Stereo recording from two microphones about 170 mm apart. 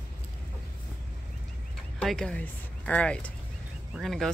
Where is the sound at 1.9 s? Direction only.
5° left (ahead or behind).